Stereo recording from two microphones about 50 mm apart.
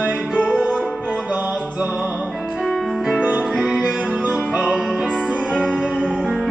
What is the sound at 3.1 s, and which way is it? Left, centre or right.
Music, right.